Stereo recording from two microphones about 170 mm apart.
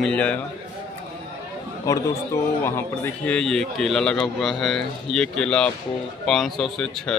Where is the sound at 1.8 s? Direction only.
20° left (ahead or behind).